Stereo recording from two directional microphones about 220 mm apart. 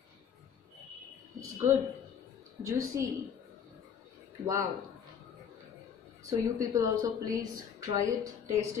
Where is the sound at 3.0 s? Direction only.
15° right (ahead or behind).